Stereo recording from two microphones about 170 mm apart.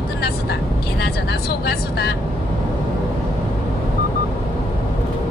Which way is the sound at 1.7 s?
70° left (ahead or behind).